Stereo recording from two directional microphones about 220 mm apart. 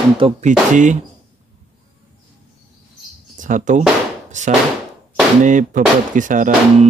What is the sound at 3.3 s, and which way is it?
Speech, 35° right (ahead or behind).